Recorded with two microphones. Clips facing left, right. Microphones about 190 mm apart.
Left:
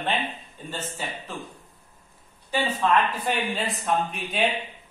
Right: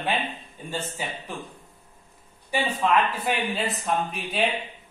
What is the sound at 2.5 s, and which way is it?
Speech, 10° right (ahead or behind).